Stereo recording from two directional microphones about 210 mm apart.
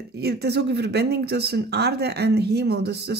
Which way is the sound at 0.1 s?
50° right (ahead or behind).